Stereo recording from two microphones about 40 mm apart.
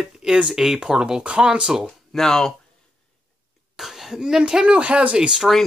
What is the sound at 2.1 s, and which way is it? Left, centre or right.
Speech, centre.